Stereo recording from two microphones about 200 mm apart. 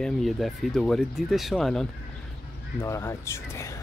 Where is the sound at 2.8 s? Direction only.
15° left (ahead or behind).